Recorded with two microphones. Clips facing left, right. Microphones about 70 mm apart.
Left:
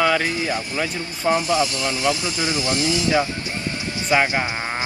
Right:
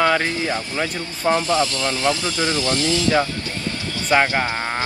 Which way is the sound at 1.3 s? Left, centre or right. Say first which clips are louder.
Even; centre.